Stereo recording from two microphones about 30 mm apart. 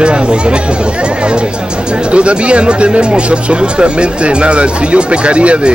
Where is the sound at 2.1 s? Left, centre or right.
Right.